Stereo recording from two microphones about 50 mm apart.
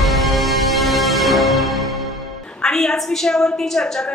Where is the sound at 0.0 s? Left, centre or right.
Centre.